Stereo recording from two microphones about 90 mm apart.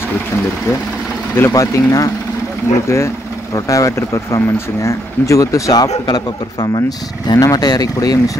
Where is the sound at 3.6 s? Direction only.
40° left (ahead or behind).